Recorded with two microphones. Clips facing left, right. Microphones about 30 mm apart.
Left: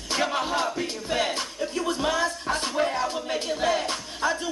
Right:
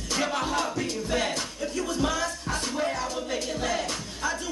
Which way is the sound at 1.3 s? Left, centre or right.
Left.